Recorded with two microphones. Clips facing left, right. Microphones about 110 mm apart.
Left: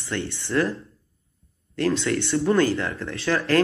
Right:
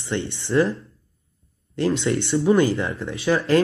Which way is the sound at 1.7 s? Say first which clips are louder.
Right 1 dB; 25° right (ahead or behind).